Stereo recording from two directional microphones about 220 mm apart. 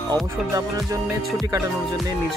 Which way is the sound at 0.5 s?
15° right (ahead or behind).